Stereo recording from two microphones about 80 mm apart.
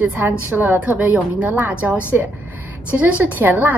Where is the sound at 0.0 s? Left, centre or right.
Right.